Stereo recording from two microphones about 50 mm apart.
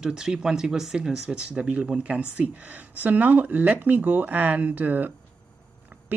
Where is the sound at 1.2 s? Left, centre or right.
Right.